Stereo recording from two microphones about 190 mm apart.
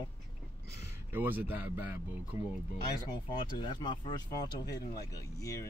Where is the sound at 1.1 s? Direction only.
10° right (ahead or behind).